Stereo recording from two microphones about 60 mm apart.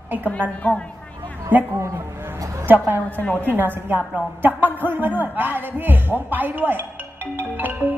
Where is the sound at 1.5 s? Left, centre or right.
Right.